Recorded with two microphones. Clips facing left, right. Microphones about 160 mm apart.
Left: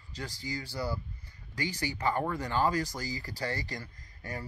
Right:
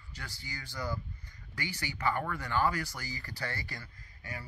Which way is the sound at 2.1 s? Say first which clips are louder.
Left 2 dB; 30° left (ahead or behind).